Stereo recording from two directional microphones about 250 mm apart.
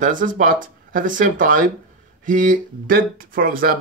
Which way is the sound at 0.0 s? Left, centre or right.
Right.